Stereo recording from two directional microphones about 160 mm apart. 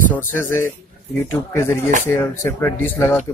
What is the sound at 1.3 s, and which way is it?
A man's voice, 15° left (ahead or behind).